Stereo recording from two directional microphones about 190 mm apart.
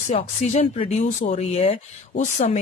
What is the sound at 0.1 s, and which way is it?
Speech, 35° left (ahead or behind).